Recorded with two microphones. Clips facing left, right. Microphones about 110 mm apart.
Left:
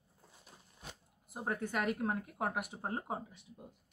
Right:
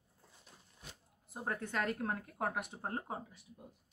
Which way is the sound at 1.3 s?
10° left (ahead or behind).